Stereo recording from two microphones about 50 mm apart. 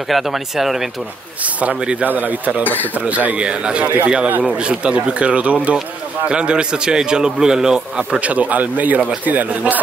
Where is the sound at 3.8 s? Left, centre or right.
Right; by 7.8 s centre.